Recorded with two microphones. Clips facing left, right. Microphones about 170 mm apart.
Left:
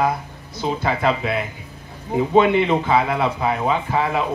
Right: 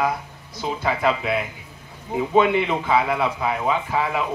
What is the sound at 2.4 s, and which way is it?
A man's voice, 5° right (ahead or behind).